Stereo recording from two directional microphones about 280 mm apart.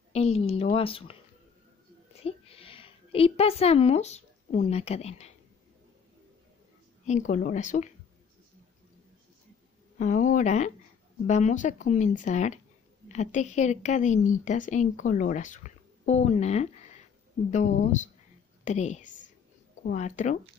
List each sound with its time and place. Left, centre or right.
0.1 s a woman's voice: left
2.2 s a woman's voice: left
7.1 s a woman's voice: left
9.9 s a woman's voice: left